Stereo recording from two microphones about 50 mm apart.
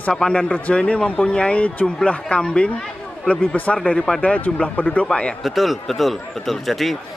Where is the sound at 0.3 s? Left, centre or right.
Left.